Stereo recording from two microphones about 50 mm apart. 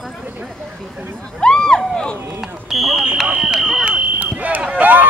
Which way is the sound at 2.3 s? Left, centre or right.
Centre.